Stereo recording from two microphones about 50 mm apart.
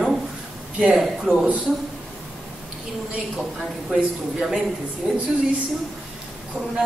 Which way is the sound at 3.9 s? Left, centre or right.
Centre.